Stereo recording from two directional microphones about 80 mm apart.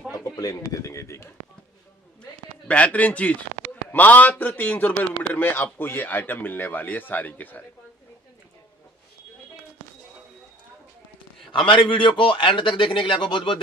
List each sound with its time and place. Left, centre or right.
0.2 s speech: left
2.7 s a man's voice: centre
11.5 s a man's voice: left